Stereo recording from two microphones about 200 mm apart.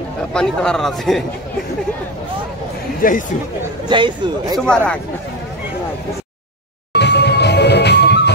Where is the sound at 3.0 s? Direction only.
45° left (ahead or behind).